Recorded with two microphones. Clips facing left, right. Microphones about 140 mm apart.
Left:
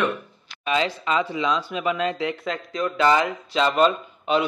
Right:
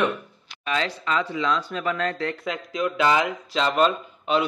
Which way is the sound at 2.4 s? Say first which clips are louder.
Even; centre (ahead or behind).